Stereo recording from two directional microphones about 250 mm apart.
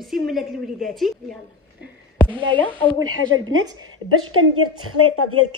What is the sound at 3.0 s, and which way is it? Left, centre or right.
A woman's voice, right.